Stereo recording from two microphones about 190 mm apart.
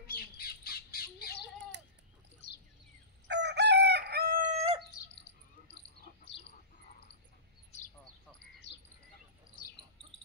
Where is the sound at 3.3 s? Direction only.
65° right (ahead or behind).